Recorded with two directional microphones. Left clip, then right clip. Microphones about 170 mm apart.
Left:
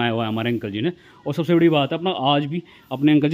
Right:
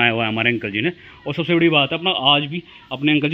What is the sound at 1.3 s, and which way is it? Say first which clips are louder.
A man's voice: even; 40° left (ahead or behind).